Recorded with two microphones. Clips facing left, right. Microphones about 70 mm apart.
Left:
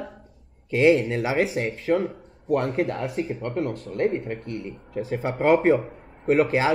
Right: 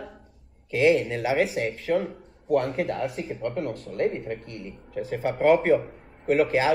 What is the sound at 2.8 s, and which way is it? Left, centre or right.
Speech, centre.